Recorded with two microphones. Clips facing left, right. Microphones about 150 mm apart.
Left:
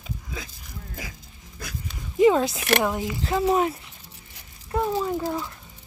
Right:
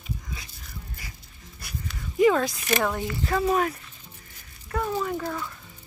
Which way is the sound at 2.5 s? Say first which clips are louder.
Left 3 dB; 70° left (ahead or behind).